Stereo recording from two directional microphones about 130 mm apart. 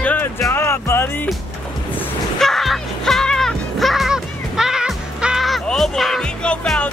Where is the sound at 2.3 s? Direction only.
Centre (ahead or behind).